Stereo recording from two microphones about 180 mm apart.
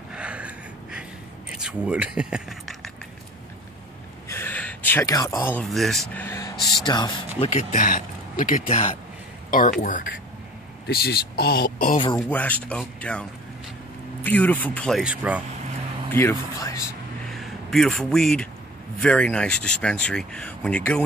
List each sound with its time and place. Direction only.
0.1 s a sound: 5° right (ahead or behind)
1.6 s speech: 5° right (ahead or behind)
4.3 s a sound: 10° left (ahead or behind)
5.7 s speech: centre (ahead or behind); by 7.4 s 25° left (ahead or behind)
7.4 s speech: 45° left (ahead or behind)
10.9 s speech: 60° left (ahead or behind)
12.2 s speech: 10° left (ahead or behind)
16.1 s speech: 15° left (ahead or behind)
17.3 s speech: centre (ahead or behind)